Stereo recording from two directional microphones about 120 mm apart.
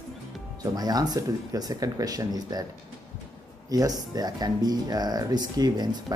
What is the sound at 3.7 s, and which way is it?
Speech, 30° right (ahead or behind).